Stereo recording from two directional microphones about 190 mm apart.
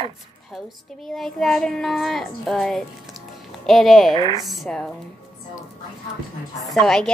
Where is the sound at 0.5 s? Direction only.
Centre (ahead or behind).